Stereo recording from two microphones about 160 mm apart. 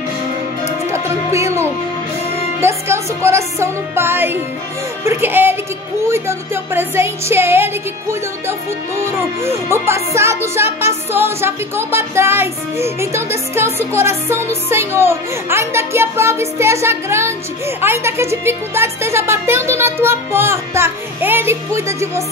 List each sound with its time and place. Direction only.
0.9 s music: 15° right (ahead or behind)